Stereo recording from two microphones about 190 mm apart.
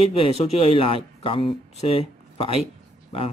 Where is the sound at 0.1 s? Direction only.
30° left (ahead or behind).